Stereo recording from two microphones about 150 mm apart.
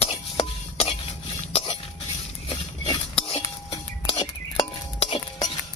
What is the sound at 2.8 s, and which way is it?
Cutlery, 30° left (ahead or behind).